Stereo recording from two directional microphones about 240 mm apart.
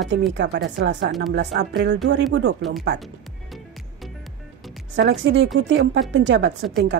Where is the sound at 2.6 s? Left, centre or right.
Centre.